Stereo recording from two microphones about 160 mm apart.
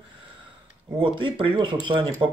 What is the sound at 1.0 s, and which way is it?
Speech, 30° right (ahead or behind).